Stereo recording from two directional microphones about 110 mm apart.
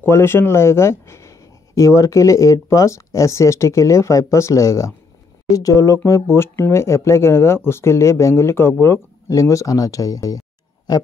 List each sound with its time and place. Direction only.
0.0 s speech: 20° left (ahead or behind); by 11.0 s 35° left (ahead or behind)